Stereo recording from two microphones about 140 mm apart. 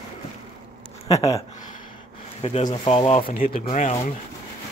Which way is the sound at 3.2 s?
90° left.